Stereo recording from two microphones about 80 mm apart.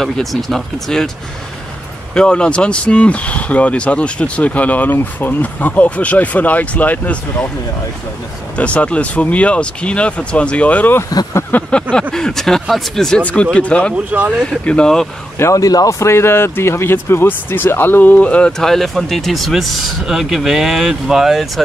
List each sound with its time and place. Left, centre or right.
0.0 s speech: centre
2.1 s speech: centre
8.5 s speech: centre
13.2 s speech: centre
15.3 s speech: left
15.6 s speech: left; by 21.6 s centre